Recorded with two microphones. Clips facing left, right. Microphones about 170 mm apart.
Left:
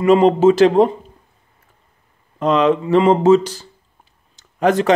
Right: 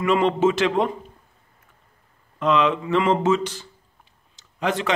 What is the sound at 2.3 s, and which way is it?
A man's voice, 40° left (ahead or behind).